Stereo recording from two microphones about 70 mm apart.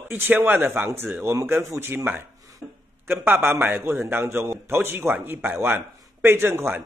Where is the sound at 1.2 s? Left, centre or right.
Right.